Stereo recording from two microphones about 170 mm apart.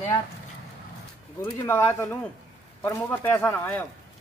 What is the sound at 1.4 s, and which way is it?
Speech, 15° left (ahead or behind).